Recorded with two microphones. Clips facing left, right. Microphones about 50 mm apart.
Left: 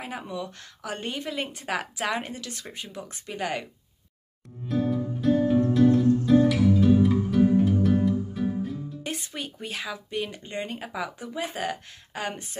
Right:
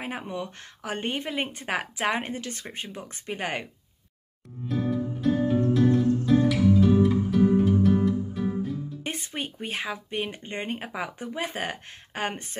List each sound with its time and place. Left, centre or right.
0.3 s speech: right
4.6 s music: centre
9.0 s speech: right